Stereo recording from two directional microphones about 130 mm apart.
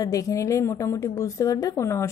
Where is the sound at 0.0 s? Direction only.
25° left (ahead or behind).